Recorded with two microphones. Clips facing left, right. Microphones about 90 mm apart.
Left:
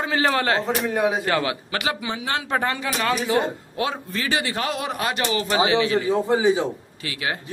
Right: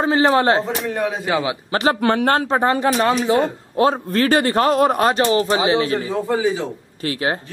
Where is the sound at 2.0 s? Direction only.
60° right (ahead or behind).